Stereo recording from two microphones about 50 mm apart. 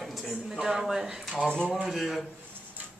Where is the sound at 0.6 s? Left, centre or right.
Centre.